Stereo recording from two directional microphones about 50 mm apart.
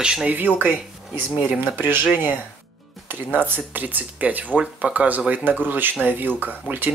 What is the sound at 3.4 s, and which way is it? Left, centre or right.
Speech, right.